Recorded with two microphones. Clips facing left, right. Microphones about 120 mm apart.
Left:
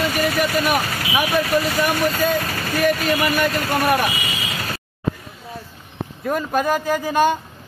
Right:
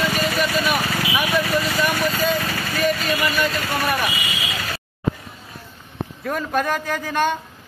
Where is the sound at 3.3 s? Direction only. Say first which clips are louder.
Left 3 dB; 55° left (ahead or behind).